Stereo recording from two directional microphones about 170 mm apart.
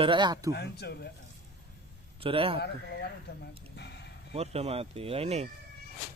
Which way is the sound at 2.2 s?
30° right (ahead or behind).